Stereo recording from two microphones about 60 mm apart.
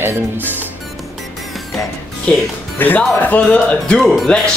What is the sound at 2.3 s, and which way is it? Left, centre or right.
Speech, centre.